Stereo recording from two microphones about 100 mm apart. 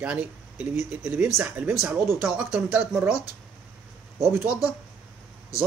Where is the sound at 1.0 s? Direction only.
20° right (ahead or behind).